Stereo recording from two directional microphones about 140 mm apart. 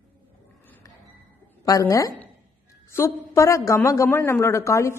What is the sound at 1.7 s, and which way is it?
A man's voice, 25° left (ahead or behind).